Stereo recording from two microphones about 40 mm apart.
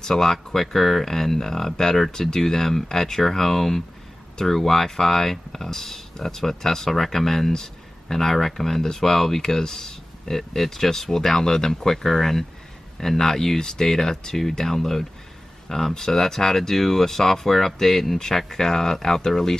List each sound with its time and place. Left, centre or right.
0.0 s speech: centre